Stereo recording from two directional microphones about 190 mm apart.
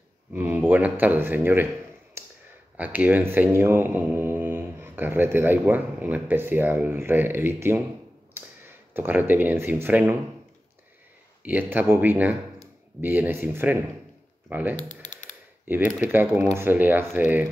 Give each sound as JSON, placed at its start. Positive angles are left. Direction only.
{"t": 0.3, "sound": "speech", "side_deg": -10}
{"t": 2.8, "sound": "speech", "side_deg": -10}
{"t": 11.4, "sound": "speech", "side_deg": -10}
{"t": 14.9, "sound": "typing", "side_deg": 40}
{"t": 15.6, "sound": "speech", "side_deg": -10}